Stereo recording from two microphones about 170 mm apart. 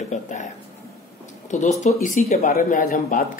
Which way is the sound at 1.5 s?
45° left (ahead or behind).